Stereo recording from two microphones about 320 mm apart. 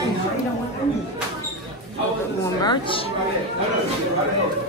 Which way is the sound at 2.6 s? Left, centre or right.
Centre.